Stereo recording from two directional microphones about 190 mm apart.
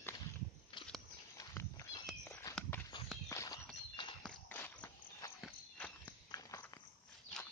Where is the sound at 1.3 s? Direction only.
15° left (ahead or behind).